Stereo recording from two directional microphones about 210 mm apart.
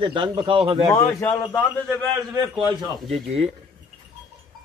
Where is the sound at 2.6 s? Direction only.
25° right (ahead or behind).